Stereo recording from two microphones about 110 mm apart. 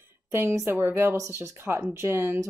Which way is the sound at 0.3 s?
20° right (ahead or behind).